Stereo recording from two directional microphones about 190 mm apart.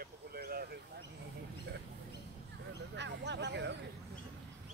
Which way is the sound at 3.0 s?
65° right (ahead or behind).